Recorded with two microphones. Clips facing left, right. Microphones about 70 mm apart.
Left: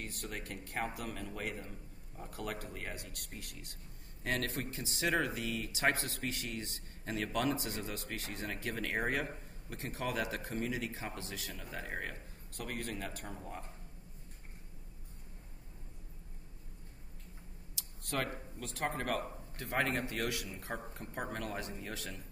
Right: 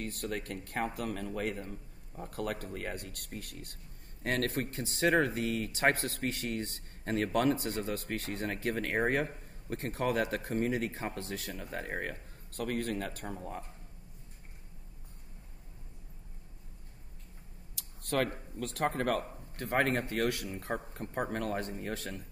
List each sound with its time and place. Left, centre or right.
0.0 s speech: right
17.7 s a sound: right
18.6 s speech: right